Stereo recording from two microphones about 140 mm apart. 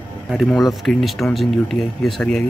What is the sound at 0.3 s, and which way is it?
Speech, centre (ahead or behind).